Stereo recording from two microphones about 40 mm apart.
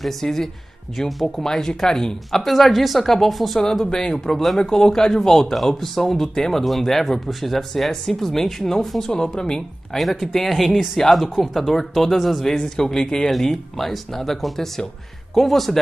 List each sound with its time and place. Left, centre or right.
0.0 s speech: centre
2.4 s speech: centre
3.8 s speech: centre
9.9 s speech: centre
12.5 s speech: centre
13.3 s speech: centre